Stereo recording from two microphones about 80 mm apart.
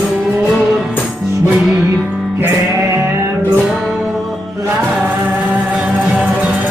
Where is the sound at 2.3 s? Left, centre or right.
Right.